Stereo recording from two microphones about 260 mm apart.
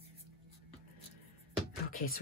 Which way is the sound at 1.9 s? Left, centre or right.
Left.